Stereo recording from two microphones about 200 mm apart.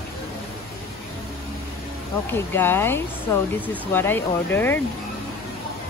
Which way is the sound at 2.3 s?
10° left (ahead or behind).